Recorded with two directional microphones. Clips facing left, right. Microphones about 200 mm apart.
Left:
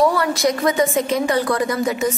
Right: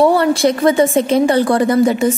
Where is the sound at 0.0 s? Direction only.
30° right (ahead or behind).